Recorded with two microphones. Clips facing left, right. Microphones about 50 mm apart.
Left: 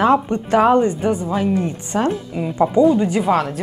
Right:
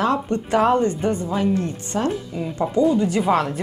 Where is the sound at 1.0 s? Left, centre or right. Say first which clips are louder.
Left 2 dB; centre.